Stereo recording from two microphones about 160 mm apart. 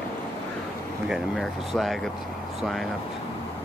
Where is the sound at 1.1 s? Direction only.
Centre (ahead or behind).